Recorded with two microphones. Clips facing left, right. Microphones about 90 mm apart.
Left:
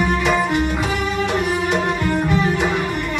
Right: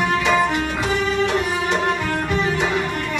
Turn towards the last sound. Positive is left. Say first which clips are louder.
# left 1 dB
turn(degrees=5)  # may be behind; listen again after turning